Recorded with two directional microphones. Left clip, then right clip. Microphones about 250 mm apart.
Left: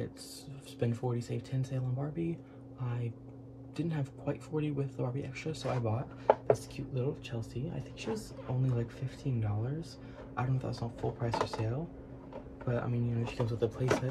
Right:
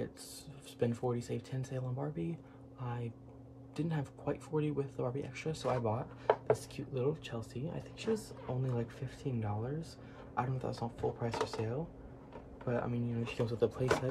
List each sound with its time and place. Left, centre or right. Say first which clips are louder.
0.7 s speech: right 1 dB; centre